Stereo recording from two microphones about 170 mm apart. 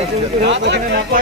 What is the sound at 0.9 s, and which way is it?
Speech, 70° right (ahead or behind).